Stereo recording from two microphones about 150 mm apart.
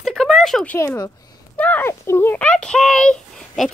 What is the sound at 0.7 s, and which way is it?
A woman's voice, 20° left (ahead or behind).